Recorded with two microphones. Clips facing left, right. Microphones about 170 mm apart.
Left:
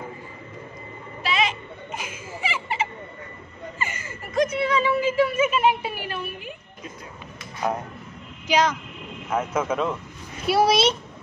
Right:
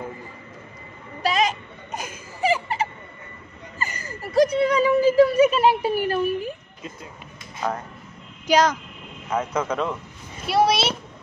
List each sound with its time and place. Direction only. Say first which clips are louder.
1.2 s a sound: right 3 dB; 40° right (ahead or behind)
8.5 s speech: right 3 dB; 40° right (ahead or behind)
9.3 s speech: even; 5° left (ahead or behind)